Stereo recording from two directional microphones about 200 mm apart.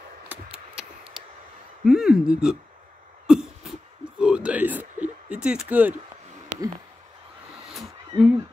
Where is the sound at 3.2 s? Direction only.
Centre (ahead or behind).